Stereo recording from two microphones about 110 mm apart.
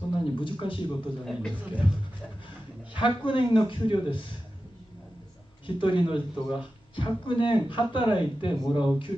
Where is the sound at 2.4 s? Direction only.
50° left (ahead or behind).